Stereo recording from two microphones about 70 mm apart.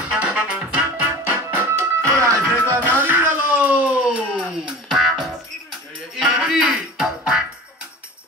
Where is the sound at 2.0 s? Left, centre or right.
Right.